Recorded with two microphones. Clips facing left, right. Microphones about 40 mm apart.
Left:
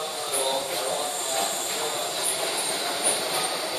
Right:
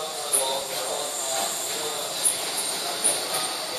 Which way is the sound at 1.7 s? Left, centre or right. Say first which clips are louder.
Left 2 dB; centre.